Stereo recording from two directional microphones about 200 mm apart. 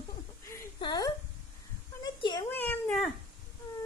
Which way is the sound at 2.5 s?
10° left (ahead or behind).